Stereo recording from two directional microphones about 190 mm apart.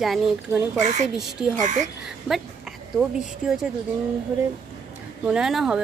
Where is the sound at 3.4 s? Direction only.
5° right (ahead or behind).